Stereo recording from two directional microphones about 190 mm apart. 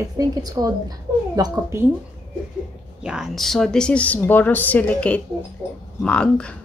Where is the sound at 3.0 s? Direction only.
Centre (ahead or behind).